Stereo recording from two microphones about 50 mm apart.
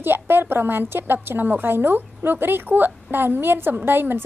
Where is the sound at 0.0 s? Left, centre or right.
Right.